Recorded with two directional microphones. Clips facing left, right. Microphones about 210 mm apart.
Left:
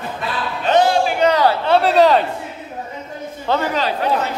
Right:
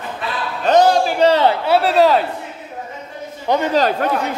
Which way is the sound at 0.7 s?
40° right (ahead or behind).